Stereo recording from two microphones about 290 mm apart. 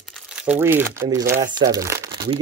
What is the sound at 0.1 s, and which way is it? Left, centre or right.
Speech, centre.